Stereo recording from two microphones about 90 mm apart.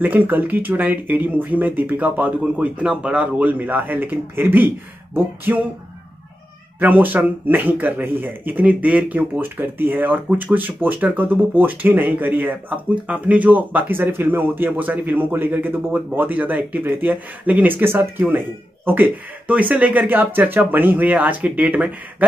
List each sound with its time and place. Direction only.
0.0 s speech: 20° right (ahead or behind)
6.8 s speech: 20° right (ahead or behind)